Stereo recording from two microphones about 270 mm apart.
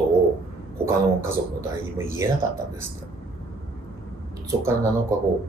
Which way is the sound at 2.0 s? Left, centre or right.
Centre.